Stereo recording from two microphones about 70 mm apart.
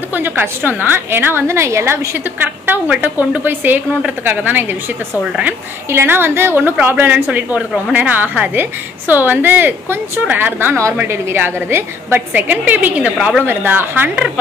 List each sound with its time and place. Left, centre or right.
0.1 s a woman's voice: right
2.4 s a woman's voice: right
5.9 s a woman's voice: right